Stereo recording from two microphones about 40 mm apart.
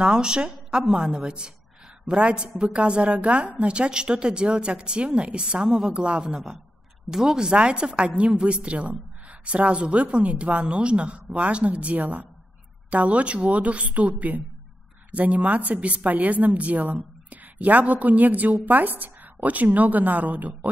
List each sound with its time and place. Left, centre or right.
0.0 s a woman's voice: right
7.1 s a woman's voice: centre; by 20.5 s right